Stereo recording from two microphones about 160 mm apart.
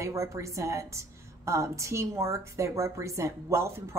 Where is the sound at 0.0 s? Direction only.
20° right (ahead or behind).